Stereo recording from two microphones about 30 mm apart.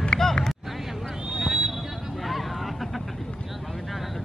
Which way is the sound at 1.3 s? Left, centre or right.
Right.